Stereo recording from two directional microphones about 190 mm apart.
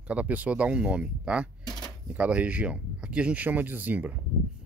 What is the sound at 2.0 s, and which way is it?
Speech, 5° right (ahead or behind).